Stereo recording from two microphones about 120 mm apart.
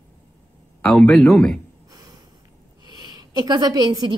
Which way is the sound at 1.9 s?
30° right (ahead or behind).